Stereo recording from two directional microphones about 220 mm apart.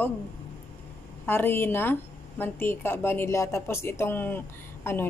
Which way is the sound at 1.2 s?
10° left (ahead or behind).